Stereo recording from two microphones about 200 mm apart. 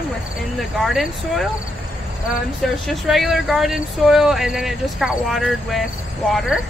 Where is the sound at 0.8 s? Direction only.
Centre (ahead or behind).